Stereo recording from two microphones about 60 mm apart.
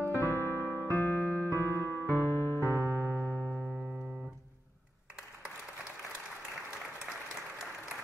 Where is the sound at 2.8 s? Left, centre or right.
Right.